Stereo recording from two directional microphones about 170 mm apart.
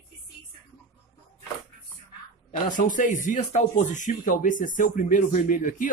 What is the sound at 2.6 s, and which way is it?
Speech, 50° left (ahead or behind).